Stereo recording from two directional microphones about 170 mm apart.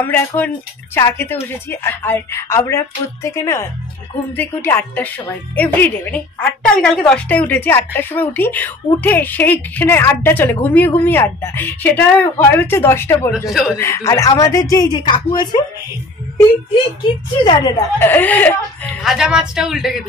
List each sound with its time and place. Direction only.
0.0 s a woman's voice: 10° left (ahead or behind)
13.5 s a woman's voice: centre (ahead or behind)
13.7 s speech: 15° left (ahead or behind)
17.4 s speech: 25° left (ahead or behind)
17.9 s a woman's voice: 10° left (ahead or behind)
19.0 s a woman's voice: 5° right (ahead or behind)